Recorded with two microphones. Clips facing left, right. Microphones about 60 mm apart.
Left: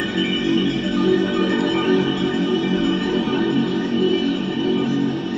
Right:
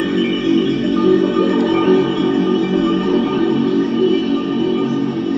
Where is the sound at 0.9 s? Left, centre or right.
Right.